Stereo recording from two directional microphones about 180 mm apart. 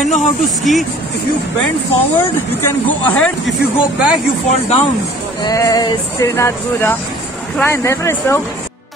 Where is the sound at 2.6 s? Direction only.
10° left (ahead or behind).